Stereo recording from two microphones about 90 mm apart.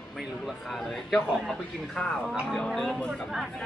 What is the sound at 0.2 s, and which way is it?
A man's voice, centre (ahead or behind).